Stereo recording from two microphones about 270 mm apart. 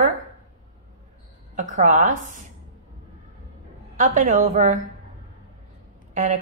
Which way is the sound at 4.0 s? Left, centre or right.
Right.